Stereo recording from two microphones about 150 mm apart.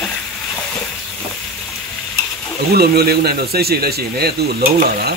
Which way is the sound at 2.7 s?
90° right.